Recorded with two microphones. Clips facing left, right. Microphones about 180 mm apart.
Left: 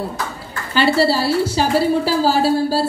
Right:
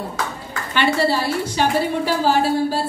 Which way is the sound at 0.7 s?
30° left (ahead or behind).